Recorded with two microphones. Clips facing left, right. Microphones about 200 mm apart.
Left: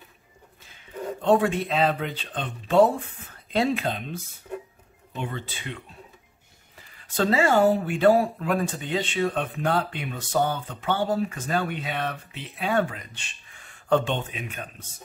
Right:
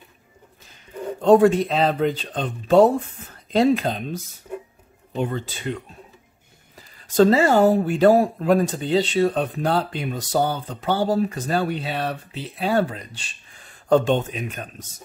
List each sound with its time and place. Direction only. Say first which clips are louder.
1.2 s speech: right 7 dB; 40° right (ahead or behind)
7.2 s speech: right 5 dB; 40° right (ahead or behind)